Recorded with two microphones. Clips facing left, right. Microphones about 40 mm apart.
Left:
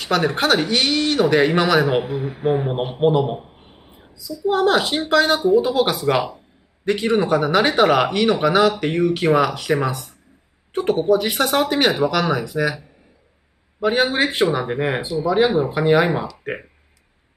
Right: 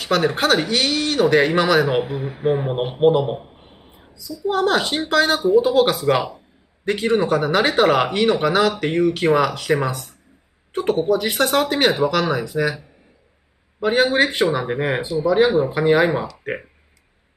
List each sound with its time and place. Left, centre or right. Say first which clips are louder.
0.0 s speech: even; centre
4.3 s speech: left 2 dB; centre